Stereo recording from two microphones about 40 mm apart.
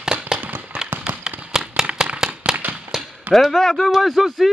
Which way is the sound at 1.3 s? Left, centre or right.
Centre.